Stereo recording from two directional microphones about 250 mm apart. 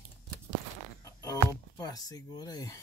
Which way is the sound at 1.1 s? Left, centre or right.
Centre.